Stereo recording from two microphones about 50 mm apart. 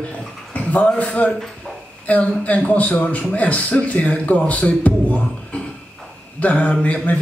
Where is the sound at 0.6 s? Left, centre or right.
Left.